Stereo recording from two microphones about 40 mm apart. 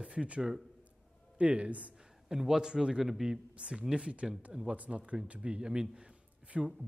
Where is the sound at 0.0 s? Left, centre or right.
Right.